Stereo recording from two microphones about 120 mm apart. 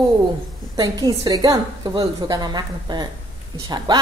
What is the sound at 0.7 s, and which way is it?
A woman's voice, 35° right (ahead or behind).